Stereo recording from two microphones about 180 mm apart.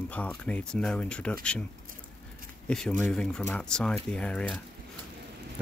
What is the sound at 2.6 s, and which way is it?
Speech, 5° left (ahead or behind).